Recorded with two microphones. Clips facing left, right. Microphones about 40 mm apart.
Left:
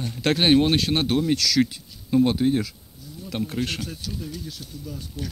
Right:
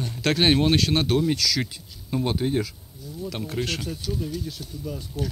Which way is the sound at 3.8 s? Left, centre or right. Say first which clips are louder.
Right 3 dB; right.